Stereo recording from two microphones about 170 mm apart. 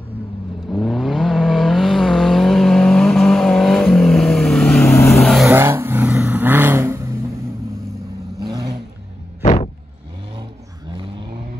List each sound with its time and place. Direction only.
0.7 s vehicle: centre (ahead or behind)
4.8 s vehicle: 15° left (ahead or behind)
5.1 s vehicle: centre (ahead or behind)
5.5 s vehicle: 15° right (ahead or behind)
8.4 s vehicle: 25° right (ahead or behind)
9.4 s a sound: 45° left (ahead or behind)
10.9 s vehicle: 30° right (ahead or behind)